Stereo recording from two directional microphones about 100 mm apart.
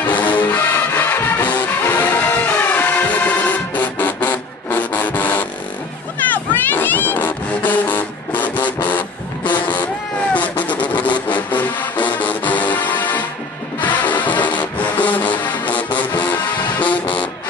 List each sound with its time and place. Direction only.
0.0 s music: 15° left (ahead or behind)
6.3 s vehicle: 20° left (ahead or behind)
11.2 s music: 15° left (ahead or behind)